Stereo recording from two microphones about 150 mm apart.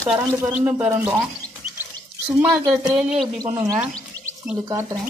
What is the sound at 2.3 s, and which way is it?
Speech, 20° right (ahead or behind).